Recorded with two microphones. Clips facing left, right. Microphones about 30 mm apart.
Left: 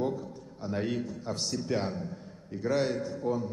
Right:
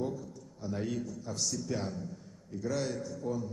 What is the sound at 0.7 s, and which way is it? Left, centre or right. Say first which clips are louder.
A man's voice: left 3 dB; left.